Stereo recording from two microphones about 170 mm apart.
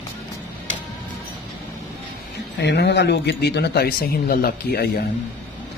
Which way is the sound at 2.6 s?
85° left.